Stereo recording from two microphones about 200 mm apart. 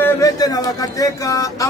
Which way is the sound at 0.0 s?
15° left (ahead or behind).